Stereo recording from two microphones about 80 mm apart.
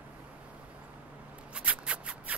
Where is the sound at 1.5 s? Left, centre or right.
Centre.